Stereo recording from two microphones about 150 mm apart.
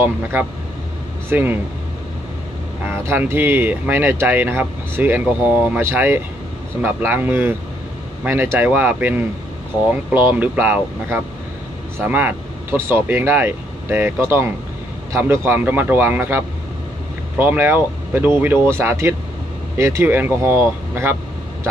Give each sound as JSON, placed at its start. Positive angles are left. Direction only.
{"t": 0.0, "sound": "speech", "side_deg": -10}
{"t": 2.8, "sound": "speech", "side_deg": -15}